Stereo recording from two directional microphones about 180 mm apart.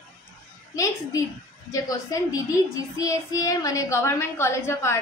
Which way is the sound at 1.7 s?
20° left (ahead or behind).